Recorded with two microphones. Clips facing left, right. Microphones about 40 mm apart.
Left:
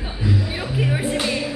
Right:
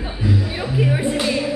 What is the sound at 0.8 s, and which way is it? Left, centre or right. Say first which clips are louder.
Music: right 3 dB; centre.